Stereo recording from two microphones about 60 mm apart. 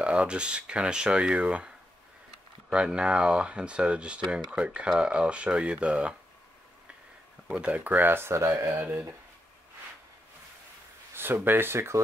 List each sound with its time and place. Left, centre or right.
0.0 s speech: centre
2.7 s speech: centre
7.6 s speech: right
8.7 s speech: right
11.1 s speech: right